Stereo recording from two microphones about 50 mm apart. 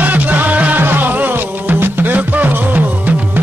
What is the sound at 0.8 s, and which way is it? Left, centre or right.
Music, right.